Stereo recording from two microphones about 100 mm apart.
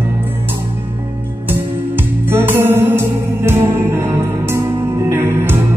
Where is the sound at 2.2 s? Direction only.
25° right (ahead or behind).